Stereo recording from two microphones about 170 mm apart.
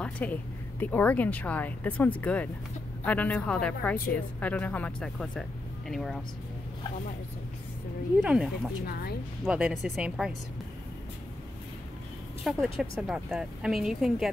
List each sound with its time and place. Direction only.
0.0 s speech: 10° left (ahead or behind)
8.2 s speech: 5° right (ahead or behind)
12.4 s speech: centre (ahead or behind)